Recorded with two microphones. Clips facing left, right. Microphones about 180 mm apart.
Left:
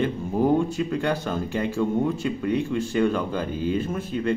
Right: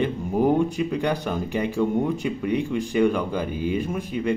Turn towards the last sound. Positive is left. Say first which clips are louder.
# even
turn(degrees=-15)  # may be behind; listen again after turning